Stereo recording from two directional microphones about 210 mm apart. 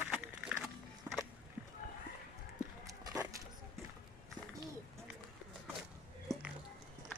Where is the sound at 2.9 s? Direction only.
15° right (ahead or behind).